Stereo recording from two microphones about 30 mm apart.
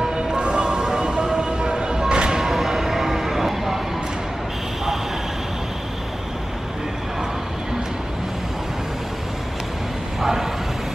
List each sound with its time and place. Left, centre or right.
0.0 s music: right
0.4 s music: right
2.4 s music: centre